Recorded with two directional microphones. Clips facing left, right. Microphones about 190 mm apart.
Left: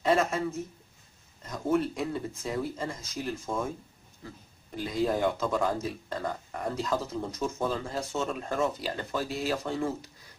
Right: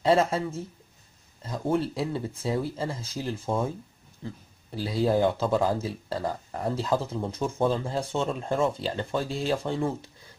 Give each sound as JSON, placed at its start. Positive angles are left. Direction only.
{"t": 0.0, "sound": "speech", "side_deg": -30}
{"t": 4.7, "sound": "speech", "side_deg": -30}